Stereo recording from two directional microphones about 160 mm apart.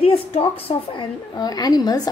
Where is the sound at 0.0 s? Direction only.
35° left (ahead or behind).